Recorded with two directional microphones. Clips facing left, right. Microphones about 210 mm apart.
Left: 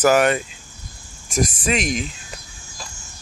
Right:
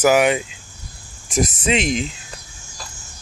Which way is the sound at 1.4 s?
20° right (ahead or behind).